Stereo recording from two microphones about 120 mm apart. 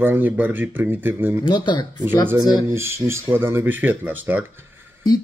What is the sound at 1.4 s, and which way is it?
Speech, 40° left (ahead or behind).